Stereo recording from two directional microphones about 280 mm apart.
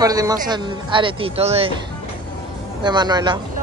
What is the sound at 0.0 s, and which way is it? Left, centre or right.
Speech, centre.